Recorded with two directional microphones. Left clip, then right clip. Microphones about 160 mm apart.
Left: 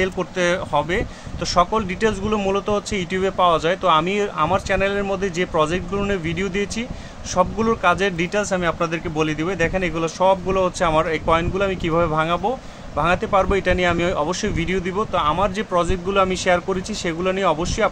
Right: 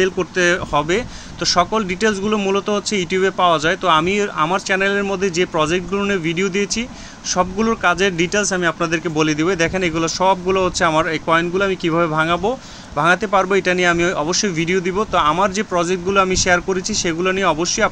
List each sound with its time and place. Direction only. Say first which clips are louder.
0.0 s speech: right 4 dB; centre (ahead or behind)
0.7 s speech: right 3 dB; 25° right (ahead or behind)
1.4 s speech: right 2 dB; 5° right (ahead or behind)
8.9 s speech: right 4 dB; 20° right (ahead or behind)
12.4 s speech: right 2 dB; 20° right (ahead or behind)
15.1 s speech: right 4 dB; 25° right (ahead or behind)
15.5 s speech: right 2 dB; 5° right (ahead or behind)